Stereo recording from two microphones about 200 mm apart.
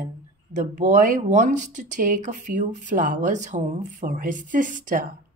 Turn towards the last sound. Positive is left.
turn(degrees=-40)  # may be behind; listen again after turning